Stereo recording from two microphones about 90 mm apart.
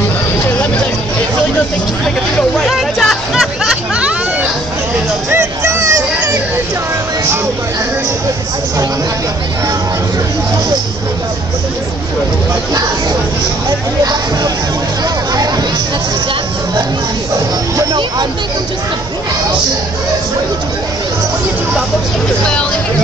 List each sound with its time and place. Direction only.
2.6 s hubbub: centre (ahead or behind)
5.3 s a sound: 30° right (ahead or behind)
13.7 s hubbub: 45° right (ahead or behind)
22.4 s hubbub: 10° left (ahead or behind)